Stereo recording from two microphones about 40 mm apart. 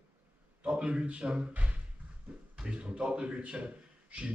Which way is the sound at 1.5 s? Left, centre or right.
Right.